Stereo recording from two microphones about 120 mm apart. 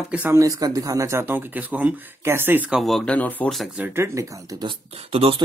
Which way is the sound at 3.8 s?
20° right (ahead or behind).